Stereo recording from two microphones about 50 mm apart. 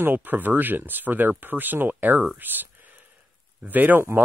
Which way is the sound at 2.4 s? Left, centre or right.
Right.